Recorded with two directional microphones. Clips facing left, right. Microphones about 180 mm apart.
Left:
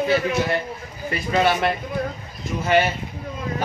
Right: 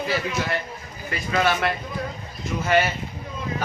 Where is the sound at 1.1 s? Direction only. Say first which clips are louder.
Left 3 dB; 25° left (ahead or behind).